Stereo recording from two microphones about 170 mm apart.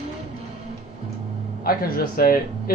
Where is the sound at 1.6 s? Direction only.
60° left (ahead or behind).